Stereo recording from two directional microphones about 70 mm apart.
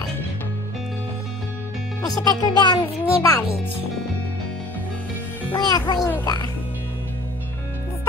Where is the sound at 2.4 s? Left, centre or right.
Left.